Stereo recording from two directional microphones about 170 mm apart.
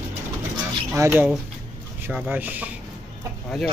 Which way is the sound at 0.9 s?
15° right (ahead or behind).